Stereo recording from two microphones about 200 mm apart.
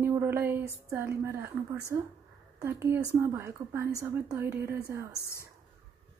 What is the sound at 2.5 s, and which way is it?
A woman's voice, 15° right (ahead or behind).